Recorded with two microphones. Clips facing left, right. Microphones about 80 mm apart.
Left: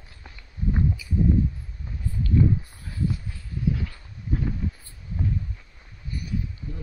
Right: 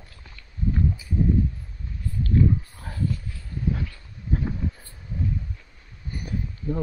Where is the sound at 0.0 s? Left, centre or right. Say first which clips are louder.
Left 1 dB; centre.